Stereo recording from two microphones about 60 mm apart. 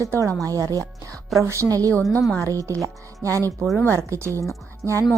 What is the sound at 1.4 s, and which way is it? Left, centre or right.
Speech, right.